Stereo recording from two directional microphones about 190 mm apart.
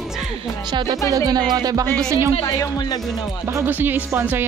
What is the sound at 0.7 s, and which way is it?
Speech, 20° right (ahead or behind).